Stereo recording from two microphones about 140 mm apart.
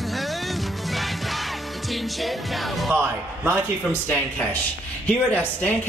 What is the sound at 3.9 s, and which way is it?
Speech, 10° left (ahead or behind).